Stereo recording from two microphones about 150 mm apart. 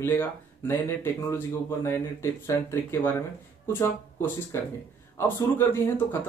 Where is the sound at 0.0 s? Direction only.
15° left (ahead or behind).